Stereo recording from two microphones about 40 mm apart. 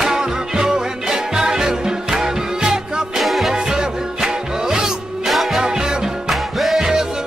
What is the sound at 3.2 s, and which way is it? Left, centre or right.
Music, centre.